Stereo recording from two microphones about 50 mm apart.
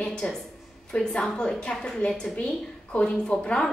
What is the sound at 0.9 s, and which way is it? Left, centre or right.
A woman's voice, centre.